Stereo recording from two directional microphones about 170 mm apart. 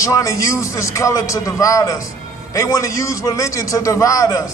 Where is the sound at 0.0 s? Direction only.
20° left (ahead or behind).